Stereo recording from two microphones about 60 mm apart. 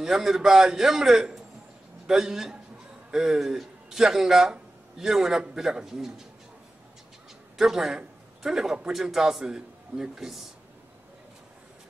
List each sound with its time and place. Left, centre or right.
0.0 s a man's voice: centre
7.5 s a man's voice: centre